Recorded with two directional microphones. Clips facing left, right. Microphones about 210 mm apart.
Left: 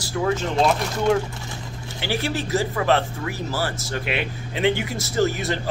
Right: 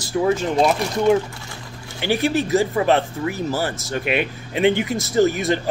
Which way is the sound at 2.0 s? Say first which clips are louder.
Right 6 dB; 15° right (ahead or behind).